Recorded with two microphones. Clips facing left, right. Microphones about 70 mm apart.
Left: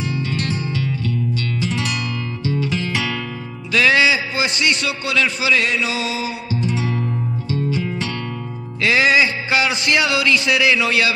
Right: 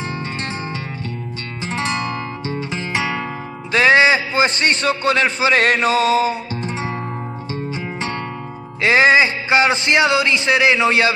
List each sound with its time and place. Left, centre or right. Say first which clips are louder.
0.0 s music: left 2 dB; right
3.7 s a man's voice: right 3 dB; right
7.5 s music: left 4 dB; right
8.8 s speech: right 3 dB; right